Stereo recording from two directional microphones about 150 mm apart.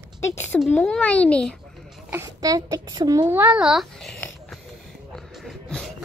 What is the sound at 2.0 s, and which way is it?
A child's voice, 20° right (ahead or behind).